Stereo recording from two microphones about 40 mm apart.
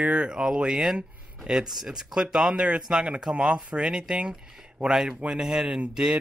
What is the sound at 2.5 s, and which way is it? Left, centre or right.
Speech, right.